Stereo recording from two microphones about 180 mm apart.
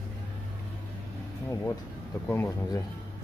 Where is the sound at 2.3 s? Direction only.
15° left (ahead or behind).